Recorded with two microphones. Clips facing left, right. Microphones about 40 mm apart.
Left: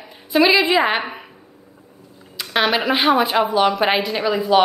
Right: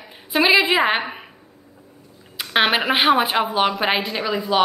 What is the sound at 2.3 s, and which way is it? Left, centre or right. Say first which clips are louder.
A woman's voice: even; right.